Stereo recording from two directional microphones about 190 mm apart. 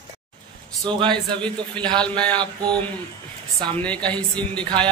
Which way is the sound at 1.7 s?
5° left (ahead or behind).